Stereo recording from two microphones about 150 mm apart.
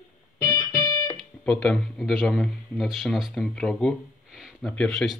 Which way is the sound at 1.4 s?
10° left (ahead or behind).